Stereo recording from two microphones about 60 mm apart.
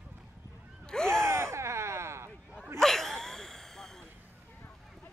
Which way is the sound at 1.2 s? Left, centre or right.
Right.